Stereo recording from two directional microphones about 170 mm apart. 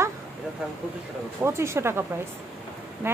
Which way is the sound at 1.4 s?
15° right (ahead or behind).